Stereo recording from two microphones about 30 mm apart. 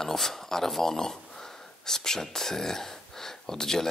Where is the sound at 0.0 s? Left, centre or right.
Centre.